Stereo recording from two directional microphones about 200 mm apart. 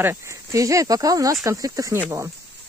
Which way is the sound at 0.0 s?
15° right (ahead or behind).